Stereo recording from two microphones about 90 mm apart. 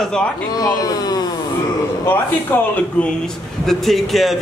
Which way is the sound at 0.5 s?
45° left (ahead or behind).